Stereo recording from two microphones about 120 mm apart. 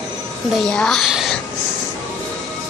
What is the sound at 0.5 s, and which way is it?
Speech, 5° left (ahead or behind).